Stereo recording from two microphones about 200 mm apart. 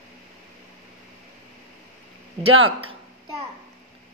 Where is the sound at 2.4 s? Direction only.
90° right.